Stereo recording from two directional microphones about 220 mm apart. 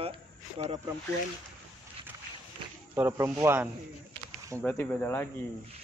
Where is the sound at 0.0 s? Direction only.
25° right (ahead or behind).